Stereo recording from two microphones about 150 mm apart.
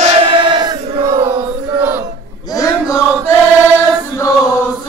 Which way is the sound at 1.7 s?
15° right (ahead or behind).